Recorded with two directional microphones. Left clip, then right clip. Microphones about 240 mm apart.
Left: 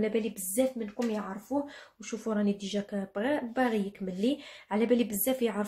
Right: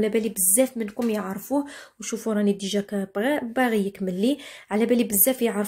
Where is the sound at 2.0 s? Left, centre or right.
Right.